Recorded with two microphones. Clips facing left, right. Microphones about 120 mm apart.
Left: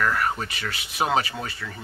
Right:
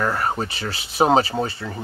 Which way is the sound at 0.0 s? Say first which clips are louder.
Right 2 dB; 30° right (ahead or behind).